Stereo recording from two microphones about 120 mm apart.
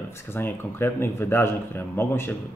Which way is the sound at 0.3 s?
20° left (ahead or behind).